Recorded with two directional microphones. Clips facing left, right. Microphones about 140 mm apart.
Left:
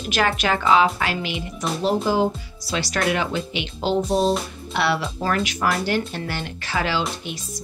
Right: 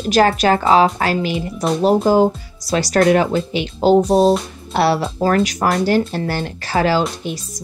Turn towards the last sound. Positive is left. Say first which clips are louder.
# right 7 dB
turn(degrees=-40)  # may be behind; listen again after turning